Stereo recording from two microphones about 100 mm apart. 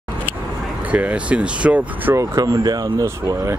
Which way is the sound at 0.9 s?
10° right (ahead or behind).